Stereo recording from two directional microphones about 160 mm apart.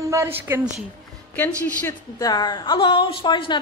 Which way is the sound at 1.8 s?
20° left (ahead or behind).